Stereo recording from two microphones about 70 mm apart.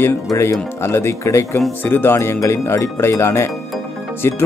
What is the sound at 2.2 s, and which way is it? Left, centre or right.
Speech, left.